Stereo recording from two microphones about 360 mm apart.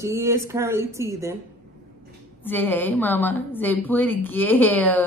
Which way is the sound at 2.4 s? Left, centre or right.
Centre.